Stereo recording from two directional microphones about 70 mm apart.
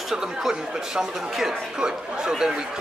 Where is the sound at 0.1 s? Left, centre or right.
Centre.